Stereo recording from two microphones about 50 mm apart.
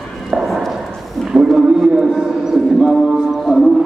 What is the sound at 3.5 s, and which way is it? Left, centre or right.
Music, centre.